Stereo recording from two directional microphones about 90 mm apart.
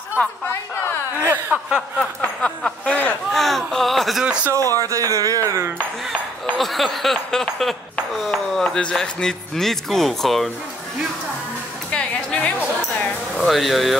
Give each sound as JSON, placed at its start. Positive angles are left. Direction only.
{"t": 0.2, "sound": "a woman's voice", "side_deg": 20}
{"t": 1.3, "sound": "speech", "side_deg": -20}
{"t": 2.0, "sound": "speech", "side_deg": 10}
{"t": 3.3, "sound": "ping", "side_deg": 5}
{"t": 4.8, "sound": "speech", "side_deg": -35}
{"t": 6.6, "sound": "ping", "side_deg": 0}
{"t": 11.9, "sound": "music", "side_deg": 10}
{"t": 12.5, "sound": "a sound", "side_deg": 15}
{"t": 13.4, "sound": "ping", "side_deg": 0}